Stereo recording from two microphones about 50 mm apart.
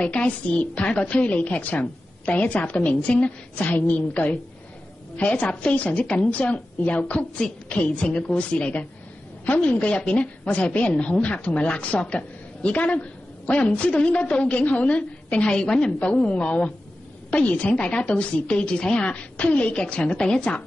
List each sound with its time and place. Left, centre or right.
0.0 s a woman's voice: left
15.5 s a woman's voice: centre